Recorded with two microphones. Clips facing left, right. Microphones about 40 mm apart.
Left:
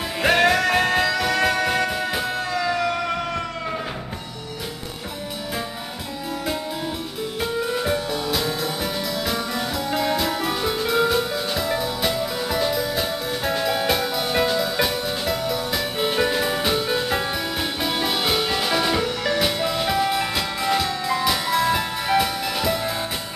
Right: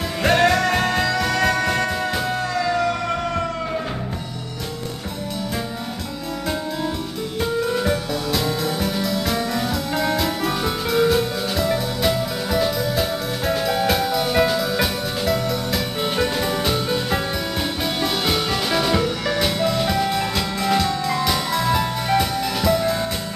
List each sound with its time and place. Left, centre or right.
0.2 s music: centre
7.3 s music: centre